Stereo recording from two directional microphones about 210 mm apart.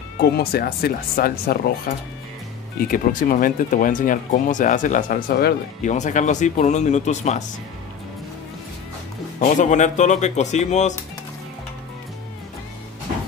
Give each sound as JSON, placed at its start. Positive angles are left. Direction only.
{"t": 0.2, "sound": "speech", "side_deg": 50}
{"t": 2.9, "sound": "speech", "side_deg": 40}
{"t": 9.4, "sound": "speech", "side_deg": 35}